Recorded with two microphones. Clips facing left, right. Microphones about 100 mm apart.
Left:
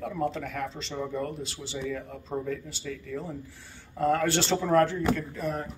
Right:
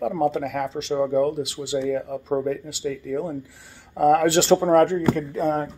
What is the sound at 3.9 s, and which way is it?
Speech, 65° right (ahead or behind).